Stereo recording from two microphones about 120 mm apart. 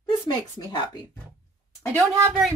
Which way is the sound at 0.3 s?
35° left (ahead or behind).